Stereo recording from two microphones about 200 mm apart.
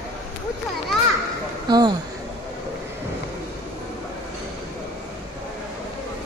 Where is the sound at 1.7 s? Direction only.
20° right (ahead or behind).